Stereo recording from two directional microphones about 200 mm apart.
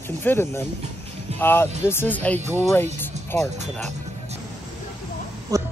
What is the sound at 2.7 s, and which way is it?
Music, 10° left (ahead or behind).